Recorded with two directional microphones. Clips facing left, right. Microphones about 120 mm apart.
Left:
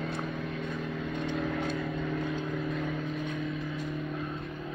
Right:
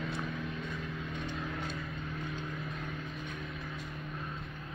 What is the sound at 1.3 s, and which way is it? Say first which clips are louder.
Vehicle: left 10 dB; 75° left (ahead or behind).